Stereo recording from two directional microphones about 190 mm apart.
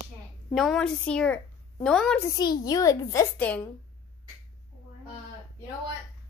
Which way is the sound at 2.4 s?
20° left (ahead or behind).